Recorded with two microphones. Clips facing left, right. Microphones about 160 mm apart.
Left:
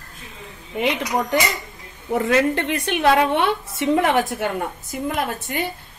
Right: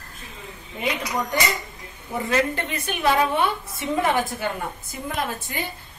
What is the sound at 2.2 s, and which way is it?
A woman's voice, 70° left (ahead or behind).